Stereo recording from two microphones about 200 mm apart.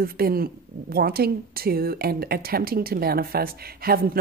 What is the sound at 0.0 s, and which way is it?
Speech, 50° right (ahead or behind).